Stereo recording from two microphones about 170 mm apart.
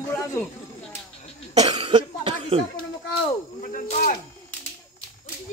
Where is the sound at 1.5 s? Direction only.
40° right (ahead or behind).